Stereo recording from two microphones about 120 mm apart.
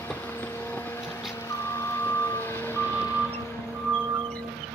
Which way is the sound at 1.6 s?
20° left (ahead or behind).